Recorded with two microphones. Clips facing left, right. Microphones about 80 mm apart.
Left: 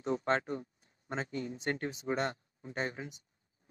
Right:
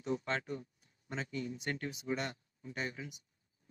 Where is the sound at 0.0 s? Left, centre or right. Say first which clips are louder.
Left 5 dB; left.